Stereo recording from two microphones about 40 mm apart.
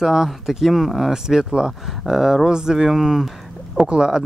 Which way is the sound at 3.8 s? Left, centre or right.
Centre.